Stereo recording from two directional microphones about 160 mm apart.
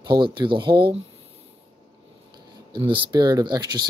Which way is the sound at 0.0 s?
30° right (ahead or behind).